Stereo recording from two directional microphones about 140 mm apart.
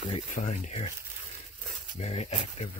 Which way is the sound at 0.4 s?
60° left (ahead or behind).